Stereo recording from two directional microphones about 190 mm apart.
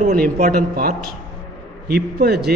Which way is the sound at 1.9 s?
55° right (ahead or behind).